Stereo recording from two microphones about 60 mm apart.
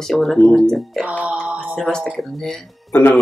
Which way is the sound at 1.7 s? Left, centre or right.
Centre.